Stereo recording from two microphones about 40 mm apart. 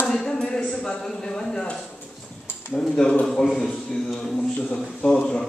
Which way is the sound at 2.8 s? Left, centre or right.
Centre.